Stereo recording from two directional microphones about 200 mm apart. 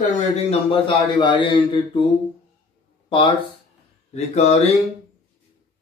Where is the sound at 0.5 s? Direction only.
25° left (ahead or behind).